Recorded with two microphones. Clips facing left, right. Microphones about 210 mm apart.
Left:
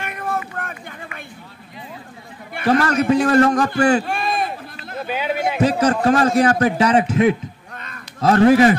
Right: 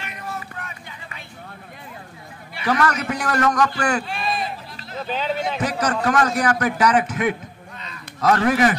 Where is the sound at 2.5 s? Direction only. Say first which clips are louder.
Left 6 dB; 55° left (ahead or behind).